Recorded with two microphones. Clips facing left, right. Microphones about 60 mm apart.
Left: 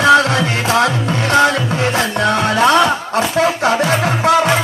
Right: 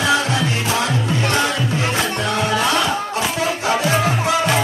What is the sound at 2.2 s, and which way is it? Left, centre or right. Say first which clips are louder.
Music: left 8 dB; left.